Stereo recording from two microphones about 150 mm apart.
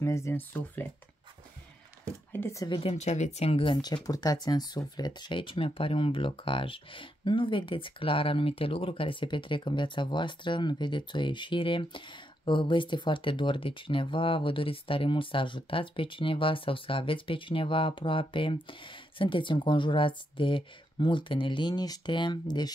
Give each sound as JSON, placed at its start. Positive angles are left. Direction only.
{"t": 0.0, "sound": "speech", "side_deg": 20}
{"t": 2.3, "sound": "speech", "side_deg": 15}
{"t": 2.6, "sound": "speech", "side_deg": 35}